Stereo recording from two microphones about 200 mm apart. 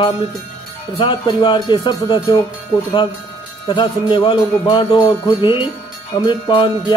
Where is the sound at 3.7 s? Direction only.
25° left (ahead or behind).